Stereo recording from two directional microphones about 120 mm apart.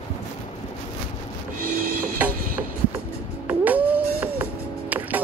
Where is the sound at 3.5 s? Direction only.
15° right (ahead or behind).